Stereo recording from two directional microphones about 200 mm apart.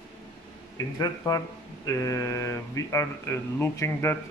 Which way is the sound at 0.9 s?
20° left (ahead or behind).